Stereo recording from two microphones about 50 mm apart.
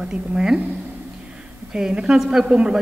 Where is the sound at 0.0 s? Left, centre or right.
Centre.